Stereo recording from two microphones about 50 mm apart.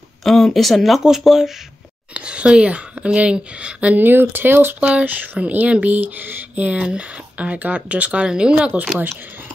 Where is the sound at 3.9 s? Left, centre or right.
Right.